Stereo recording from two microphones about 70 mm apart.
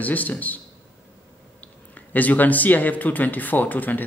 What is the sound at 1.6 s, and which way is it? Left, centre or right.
Speech, left.